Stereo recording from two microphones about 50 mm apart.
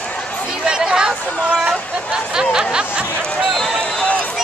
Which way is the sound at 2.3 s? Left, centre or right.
Centre.